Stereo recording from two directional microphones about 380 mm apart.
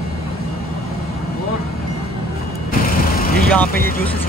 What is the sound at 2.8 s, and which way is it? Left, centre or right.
Vehicle, left.